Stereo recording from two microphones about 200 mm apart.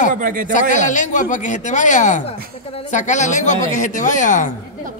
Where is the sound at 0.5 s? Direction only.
40° left (ahead or behind).